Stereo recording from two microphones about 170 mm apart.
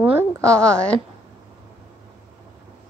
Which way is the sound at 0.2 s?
20° right (ahead or behind).